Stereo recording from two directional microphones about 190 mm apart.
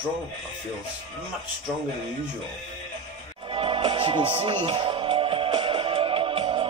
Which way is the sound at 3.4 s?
30° right (ahead or behind).